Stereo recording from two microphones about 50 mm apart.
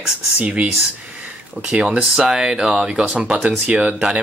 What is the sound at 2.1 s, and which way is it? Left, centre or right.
Speech, centre.